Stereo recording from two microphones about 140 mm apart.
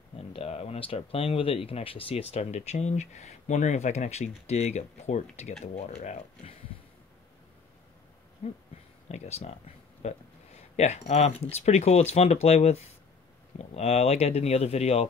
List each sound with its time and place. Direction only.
0.3 s speech: 45° left (ahead or behind)
8.4 s speech: 55° left (ahead or behind)